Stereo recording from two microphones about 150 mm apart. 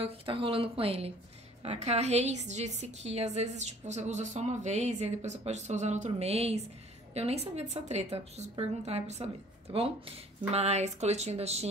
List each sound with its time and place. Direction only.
0.0 s a woman's voice: 35° right (ahead or behind)